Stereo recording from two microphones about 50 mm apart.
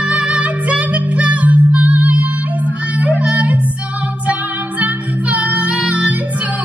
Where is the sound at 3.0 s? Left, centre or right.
Right.